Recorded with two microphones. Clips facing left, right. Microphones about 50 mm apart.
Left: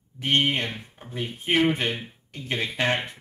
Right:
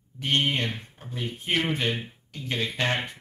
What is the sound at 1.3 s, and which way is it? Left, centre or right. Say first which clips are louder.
Speech: left 5 dB; centre.